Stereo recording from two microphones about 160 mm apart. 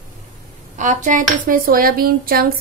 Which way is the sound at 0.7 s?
50° right (ahead or behind).